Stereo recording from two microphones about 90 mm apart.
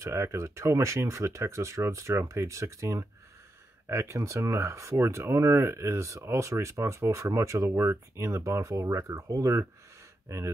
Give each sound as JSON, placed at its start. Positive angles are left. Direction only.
{"t": 0.0, "sound": "speech", "side_deg": -35}